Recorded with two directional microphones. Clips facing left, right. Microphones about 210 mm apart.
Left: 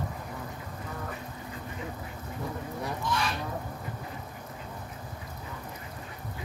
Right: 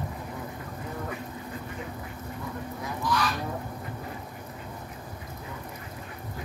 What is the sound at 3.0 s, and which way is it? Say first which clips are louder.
Goose: right 5 dB; 25° left (ahead or behind).